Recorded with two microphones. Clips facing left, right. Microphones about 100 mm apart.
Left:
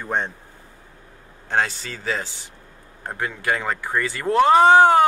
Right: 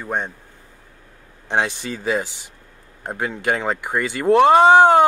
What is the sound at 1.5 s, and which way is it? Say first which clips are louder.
A woman's voice: right 1 dB; 15° right (ahead or behind).